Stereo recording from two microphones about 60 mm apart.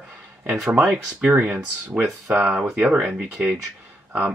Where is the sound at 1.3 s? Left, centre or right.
Right.